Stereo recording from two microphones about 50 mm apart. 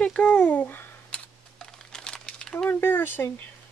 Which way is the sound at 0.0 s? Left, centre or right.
Left.